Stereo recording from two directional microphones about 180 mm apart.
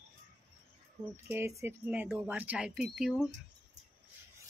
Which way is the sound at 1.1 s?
15° right (ahead or behind).